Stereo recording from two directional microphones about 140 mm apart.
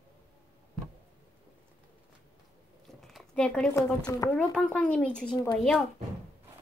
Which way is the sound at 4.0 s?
25° left (ahead or behind).